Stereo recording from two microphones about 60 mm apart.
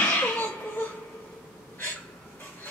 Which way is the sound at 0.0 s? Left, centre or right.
Left.